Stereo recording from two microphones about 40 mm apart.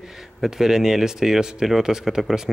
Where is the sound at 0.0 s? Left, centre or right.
Centre.